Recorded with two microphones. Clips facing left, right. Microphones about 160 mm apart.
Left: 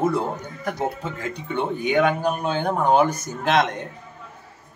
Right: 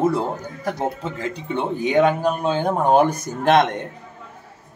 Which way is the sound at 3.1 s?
55° right (ahead or behind).